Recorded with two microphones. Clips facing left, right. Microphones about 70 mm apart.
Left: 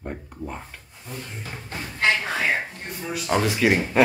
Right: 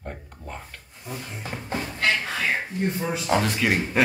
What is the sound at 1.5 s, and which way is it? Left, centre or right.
Speech, right.